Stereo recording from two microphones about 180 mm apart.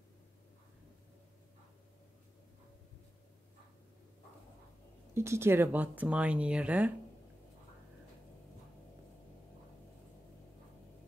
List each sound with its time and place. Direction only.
5.1 s speech: 15° right (ahead or behind)